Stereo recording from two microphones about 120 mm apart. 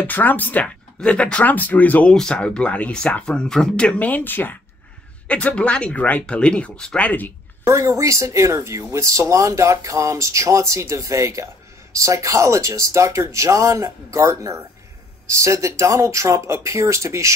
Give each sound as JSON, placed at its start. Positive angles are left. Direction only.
{"t": 0.0, "sound": "speech", "side_deg": 15}
{"t": 7.6, "sound": "speech", "side_deg": -25}